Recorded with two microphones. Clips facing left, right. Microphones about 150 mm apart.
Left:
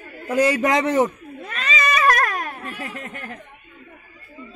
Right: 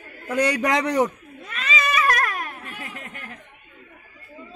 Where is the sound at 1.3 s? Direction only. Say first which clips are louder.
Left 2 dB; 45° left (ahead or behind).